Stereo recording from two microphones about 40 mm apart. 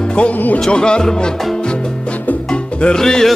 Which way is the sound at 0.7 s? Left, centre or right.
Left.